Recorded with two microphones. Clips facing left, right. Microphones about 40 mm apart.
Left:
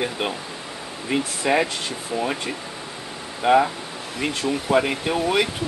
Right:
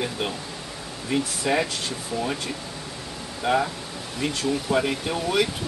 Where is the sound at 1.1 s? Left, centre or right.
Left.